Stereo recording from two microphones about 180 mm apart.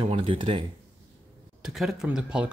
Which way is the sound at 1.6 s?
Centre (ahead or behind).